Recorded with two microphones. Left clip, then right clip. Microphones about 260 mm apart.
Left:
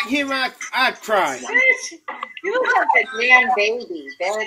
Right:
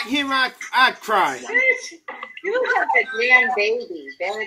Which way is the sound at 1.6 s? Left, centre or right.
Left.